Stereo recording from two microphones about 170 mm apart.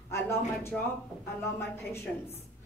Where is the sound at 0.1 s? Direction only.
15° left (ahead or behind).